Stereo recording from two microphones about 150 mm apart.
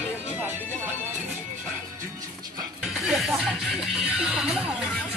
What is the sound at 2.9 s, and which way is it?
Music, centre (ahead or behind).